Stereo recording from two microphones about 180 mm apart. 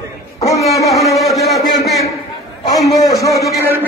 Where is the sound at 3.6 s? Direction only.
10° right (ahead or behind).